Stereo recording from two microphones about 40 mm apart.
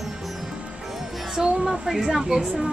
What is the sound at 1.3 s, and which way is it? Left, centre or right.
Speech, centre.